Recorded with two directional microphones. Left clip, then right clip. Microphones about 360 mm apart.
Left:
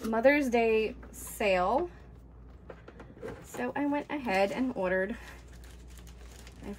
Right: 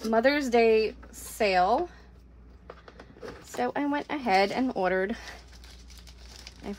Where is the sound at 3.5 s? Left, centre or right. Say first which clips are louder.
Right 4 dB; centre.